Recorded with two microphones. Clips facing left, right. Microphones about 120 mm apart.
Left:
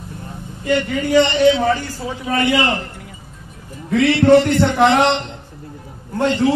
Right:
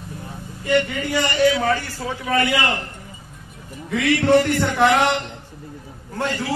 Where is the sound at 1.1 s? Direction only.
25° left (ahead or behind).